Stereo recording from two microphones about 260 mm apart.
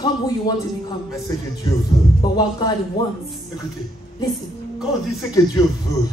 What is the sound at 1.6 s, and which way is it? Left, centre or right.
Speech, centre.